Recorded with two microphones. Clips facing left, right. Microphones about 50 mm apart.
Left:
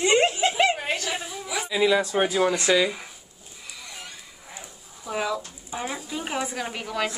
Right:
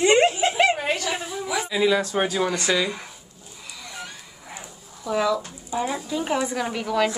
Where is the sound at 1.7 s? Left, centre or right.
Centre.